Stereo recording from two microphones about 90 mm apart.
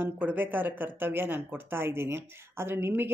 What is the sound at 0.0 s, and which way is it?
Speech, 20° right (ahead or behind).